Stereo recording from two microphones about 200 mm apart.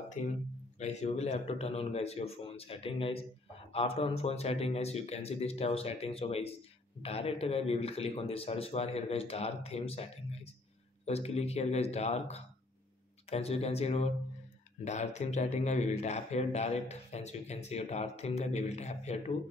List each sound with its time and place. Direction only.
0.2 s speech: 40° left (ahead or behind)